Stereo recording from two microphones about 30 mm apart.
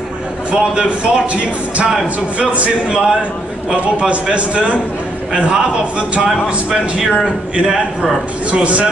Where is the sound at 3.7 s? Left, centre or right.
Right.